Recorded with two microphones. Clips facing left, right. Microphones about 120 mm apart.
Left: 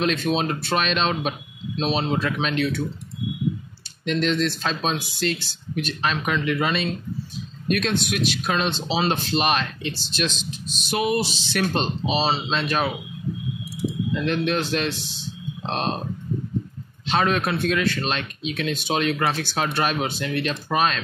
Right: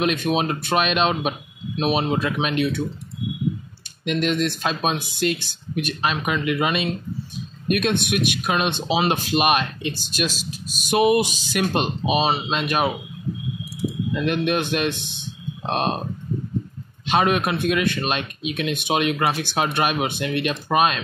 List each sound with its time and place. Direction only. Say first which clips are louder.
0.0 s speech: right 1 dB; 15° right (ahead or behind)
4.0 s speech: even; 15° right (ahead or behind)
14.1 s speech: right 2 dB; 15° right (ahead or behind)
17.1 s speech: right 2 dB; 15° right (ahead or behind)